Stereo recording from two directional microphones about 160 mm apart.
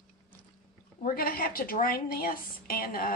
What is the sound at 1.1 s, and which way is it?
A woman's voice, 65° left (ahead or behind).